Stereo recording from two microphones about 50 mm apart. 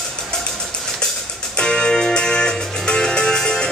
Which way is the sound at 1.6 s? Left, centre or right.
Centre.